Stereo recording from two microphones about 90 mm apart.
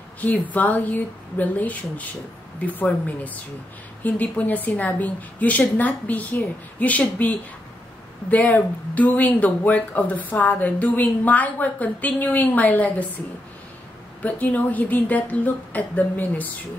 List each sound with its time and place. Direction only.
0.2 s speech: 20° left (ahead or behind)
4.0 s speech: 20° left (ahead or behind)
14.2 s speech: 20° left (ahead or behind)